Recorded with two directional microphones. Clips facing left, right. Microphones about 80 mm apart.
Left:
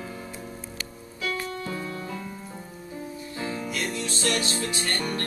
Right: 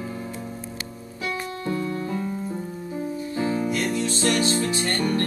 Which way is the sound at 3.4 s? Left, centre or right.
Right.